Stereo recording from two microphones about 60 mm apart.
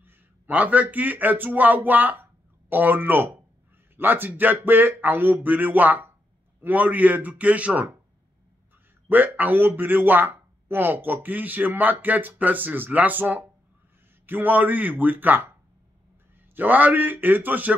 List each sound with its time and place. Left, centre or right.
0.5 s a man's voice: right
9.1 s speech: right
16.5 s speech: right